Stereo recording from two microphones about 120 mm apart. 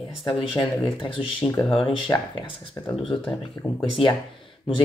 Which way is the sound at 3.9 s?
45° left (ahead or behind).